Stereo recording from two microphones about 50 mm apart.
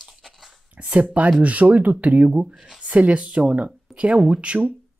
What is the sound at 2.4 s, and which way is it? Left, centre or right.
Speech, centre.